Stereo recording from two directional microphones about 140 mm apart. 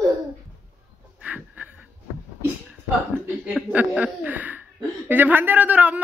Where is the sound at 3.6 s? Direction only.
10° right (ahead or behind).